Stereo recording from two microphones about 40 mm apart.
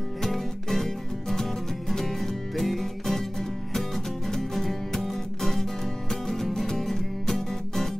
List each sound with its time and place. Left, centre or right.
0.2 s music: centre